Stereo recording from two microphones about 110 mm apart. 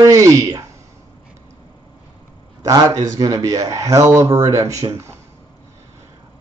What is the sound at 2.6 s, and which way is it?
Speech, 30° right (ahead or behind).